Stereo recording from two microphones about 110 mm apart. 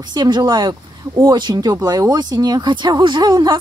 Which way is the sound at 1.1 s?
30° right (ahead or behind).